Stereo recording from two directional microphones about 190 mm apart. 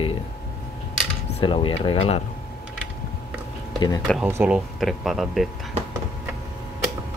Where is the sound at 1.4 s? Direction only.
25° left (ahead or behind).